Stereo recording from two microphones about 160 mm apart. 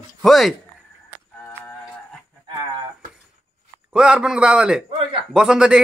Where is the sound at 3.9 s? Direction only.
5° right (ahead or behind).